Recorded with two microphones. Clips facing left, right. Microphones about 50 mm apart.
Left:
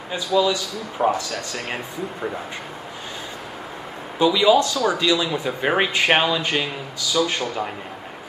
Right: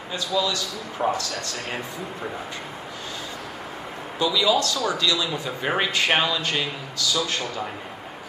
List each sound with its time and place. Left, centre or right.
0.1 s speech: centre
4.2 s speech: left